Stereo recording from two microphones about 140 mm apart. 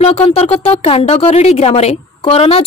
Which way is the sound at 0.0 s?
45° left (ahead or behind).